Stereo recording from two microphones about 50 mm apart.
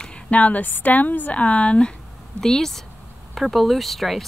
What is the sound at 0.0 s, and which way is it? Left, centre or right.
A woman's voice, left.